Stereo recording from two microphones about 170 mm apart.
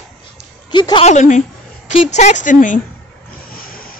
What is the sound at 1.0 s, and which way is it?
A man's voice, 45° left (ahead or behind).